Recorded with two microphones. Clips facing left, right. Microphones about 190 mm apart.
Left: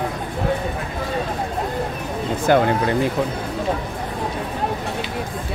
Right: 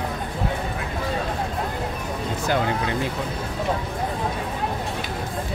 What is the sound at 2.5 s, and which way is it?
Speech, 60° left (ahead or behind).